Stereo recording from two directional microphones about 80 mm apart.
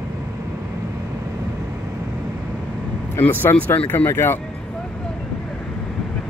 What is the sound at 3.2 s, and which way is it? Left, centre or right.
Speech, left.